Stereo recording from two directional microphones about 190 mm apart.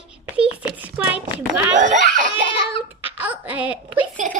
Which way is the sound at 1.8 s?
40° right (ahead or behind).